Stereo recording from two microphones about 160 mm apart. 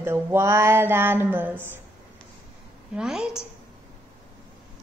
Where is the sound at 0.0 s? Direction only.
15° right (ahead or behind).